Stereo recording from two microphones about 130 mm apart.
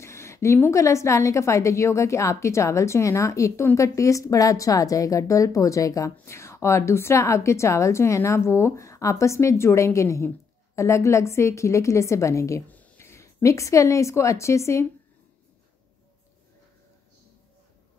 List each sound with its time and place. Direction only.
0.0 s a woman's voice: 20° left (ahead or behind)